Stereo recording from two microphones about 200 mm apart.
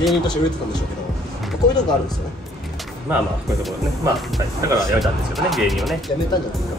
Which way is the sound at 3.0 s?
5° right (ahead or behind).